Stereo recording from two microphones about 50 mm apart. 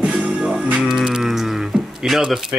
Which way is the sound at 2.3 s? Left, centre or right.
Centre.